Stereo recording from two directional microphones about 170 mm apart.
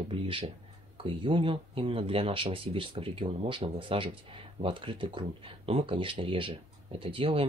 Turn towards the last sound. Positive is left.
turn(degrees=-30)  # may be behind; listen again after turning